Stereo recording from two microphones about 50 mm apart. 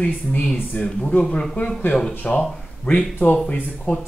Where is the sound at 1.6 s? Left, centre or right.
Left.